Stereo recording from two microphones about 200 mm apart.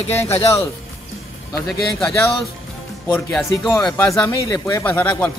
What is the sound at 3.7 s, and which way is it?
Speech, 15° left (ahead or behind).